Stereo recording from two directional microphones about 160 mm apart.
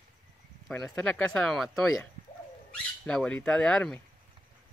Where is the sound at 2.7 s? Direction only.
5° left (ahead or behind).